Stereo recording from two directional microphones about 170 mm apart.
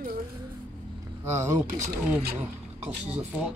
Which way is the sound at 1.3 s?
15° right (ahead or behind).